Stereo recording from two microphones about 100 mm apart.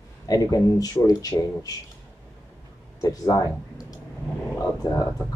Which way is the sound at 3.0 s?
35° left (ahead or behind).